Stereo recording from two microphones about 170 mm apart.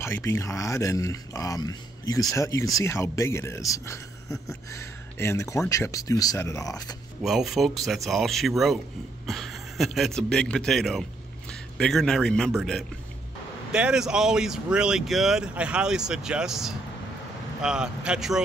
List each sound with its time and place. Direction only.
0.0 s speech: 15° left (ahead or behind)
7.2 s a man's voice: centre (ahead or behind)